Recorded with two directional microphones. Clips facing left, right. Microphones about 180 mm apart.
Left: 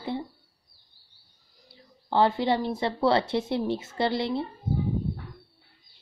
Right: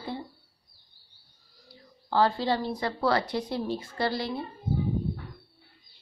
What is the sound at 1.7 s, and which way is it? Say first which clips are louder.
A woman's voice: left 2 dB; 20° left (ahead or behind).